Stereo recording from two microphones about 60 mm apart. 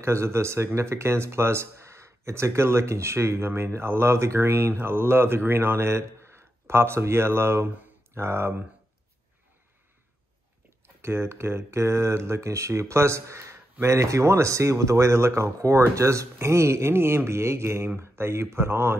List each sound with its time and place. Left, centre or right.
0.0 s speech: right
11.0 s speech: right